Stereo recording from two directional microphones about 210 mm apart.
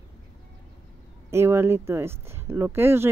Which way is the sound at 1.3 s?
10° right (ahead or behind).